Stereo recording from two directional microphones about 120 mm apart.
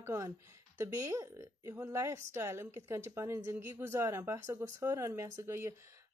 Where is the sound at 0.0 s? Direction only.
25° right (ahead or behind).